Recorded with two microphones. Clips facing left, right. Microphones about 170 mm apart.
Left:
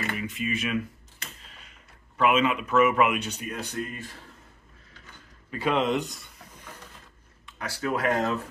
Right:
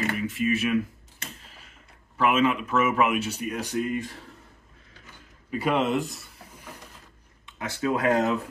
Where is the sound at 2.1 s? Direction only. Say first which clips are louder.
Right 1 dB; centre (ahead or behind).